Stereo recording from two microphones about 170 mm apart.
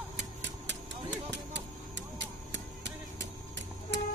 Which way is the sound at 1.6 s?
90° right.